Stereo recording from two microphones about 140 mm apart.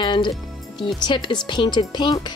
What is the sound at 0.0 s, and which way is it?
Speech, 35° left (ahead or behind).